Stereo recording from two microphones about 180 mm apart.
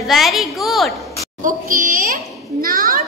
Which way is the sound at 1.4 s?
50° right (ahead or behind).